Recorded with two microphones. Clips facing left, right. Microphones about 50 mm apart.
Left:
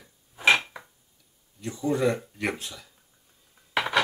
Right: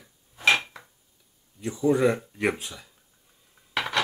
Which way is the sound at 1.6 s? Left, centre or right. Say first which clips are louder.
Right 4 dB; centre.